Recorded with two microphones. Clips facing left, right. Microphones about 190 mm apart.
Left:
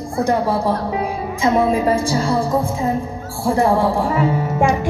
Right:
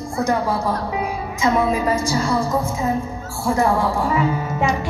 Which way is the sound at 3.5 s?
30° left (ahead or behind).